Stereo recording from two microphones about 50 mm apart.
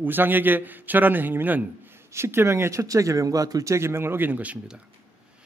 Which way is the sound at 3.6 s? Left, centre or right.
Right.